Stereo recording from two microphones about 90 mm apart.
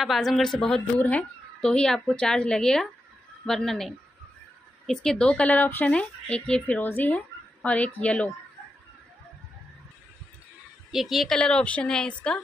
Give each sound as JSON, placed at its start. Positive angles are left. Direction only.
{"t": 0.0, "sound": "speech", "side_deg": 0}
{"t": 10.9, "sound": "speech", "side_deg": -5}
{"t": 11.3, "sound": "speech", "side_deg": 10}